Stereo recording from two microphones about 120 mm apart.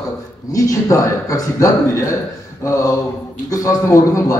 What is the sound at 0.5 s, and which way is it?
A man's voice, 30° left (ahead or behind).